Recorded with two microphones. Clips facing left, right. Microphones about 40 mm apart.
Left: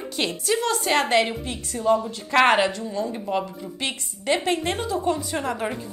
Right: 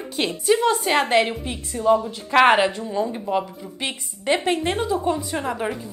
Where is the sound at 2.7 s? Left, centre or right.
Centre.